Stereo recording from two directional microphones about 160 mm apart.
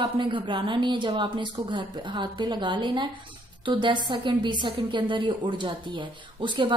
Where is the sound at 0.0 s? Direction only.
30° right (ahead or behind).